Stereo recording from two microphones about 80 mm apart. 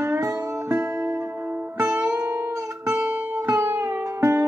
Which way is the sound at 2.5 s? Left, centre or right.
Right.